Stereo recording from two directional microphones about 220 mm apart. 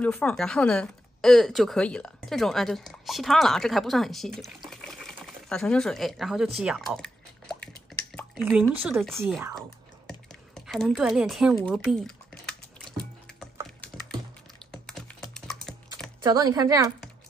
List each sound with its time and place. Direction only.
0.0 s a woman's voice: 5° left (ahead or behind)
4.6 s a sound: centre (ahead or behind)
8.1 s speech: centre (ahead or behind)
9.6 s typing: centre (ahead or behind)
14.6 s typing: centre (ahead or behind)
16.2 s speech: 15° right (ahead or behind)